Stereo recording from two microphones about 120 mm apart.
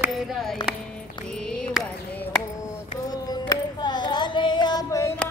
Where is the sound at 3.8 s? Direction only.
35° left (ahead or behind).